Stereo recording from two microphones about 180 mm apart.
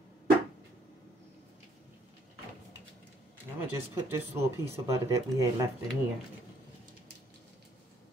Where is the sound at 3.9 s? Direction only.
15° right (ahead or behind).